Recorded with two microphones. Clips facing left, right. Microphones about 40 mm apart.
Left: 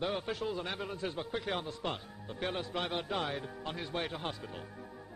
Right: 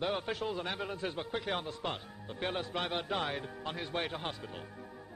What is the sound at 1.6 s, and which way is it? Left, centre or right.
A man's voice, centre.